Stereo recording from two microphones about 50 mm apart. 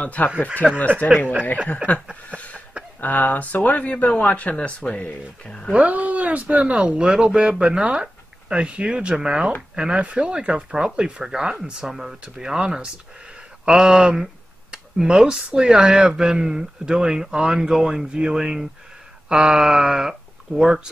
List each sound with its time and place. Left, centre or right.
0.0 s speech: left
2.3 s a sound: left
3.0 s speech: left
5.8 s speech: right; by 20.8 s centre